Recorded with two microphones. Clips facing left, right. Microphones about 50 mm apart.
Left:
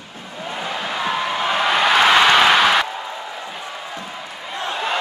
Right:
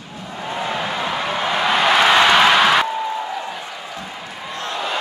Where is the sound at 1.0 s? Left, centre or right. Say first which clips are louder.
Left 3 dB; centre.